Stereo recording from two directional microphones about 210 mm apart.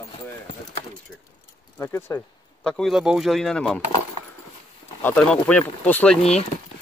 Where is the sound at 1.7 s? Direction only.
10° left (ahead or behind).